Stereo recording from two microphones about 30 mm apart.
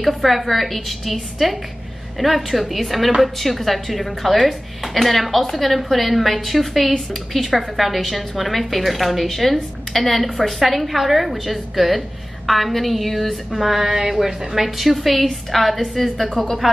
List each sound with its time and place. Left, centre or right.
0.0 s a woman's voice: centre